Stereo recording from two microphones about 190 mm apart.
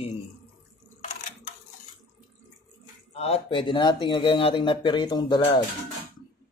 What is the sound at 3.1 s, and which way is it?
Speech, 30° left (ahead or behind).